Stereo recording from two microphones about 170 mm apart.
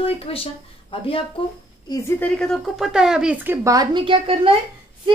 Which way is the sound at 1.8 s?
20° left (ahead or behind).